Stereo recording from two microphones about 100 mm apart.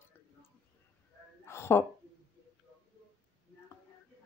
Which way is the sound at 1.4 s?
25° left (ahead or behind).